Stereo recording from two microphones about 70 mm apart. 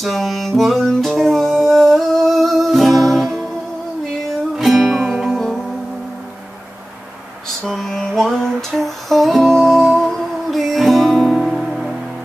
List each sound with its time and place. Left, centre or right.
0.0 s music: centre
4.6 s music: centre
7.6 s music: centre